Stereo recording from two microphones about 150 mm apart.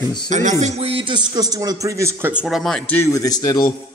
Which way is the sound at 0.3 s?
55° right (ahead or behind).